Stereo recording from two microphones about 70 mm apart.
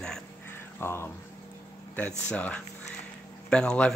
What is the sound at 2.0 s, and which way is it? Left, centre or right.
Speech, centre.